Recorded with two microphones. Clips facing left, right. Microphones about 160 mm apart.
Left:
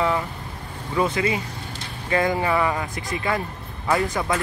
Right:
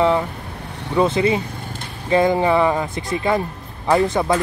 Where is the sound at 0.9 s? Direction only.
25° right (ahead or behind).